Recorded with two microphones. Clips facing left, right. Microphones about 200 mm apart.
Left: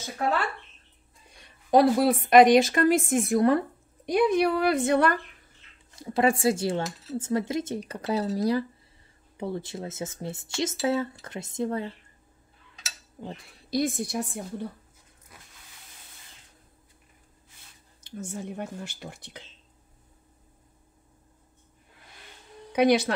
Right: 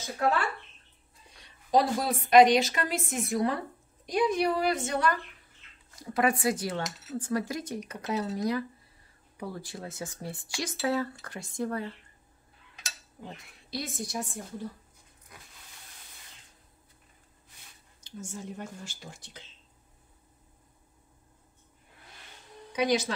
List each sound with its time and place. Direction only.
1.7 s speech: 60° left (ahead or behind)
5.9 s speech: 25° left (ahead or behind)
13.2 s speech: 30° left (ahead or behind)
13.7 s speech: 55° left (ahead or behind)
18.0 s speech: 60° left (ahead or behind)
22.7 s speech: 60° left (ahead or behind)